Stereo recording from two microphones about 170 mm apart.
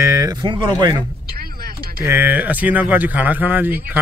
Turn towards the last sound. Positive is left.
turn(degrees=-10)  # may be behind; listen again after turning